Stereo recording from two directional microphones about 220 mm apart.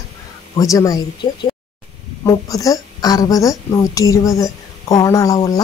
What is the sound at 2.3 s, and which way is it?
Speech, 15° left (ahead or behind).